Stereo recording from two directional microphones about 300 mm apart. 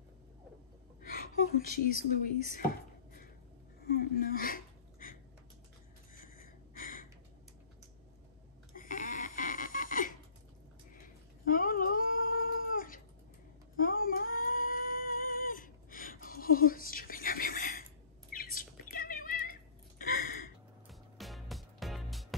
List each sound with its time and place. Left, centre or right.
1.0 s speech: left
3.8 s a sound: left
8.7 s snoring: left
11.4 s cat: left
13.7 s a sound: left
18.3 s chirp: left
20.9 s music: centre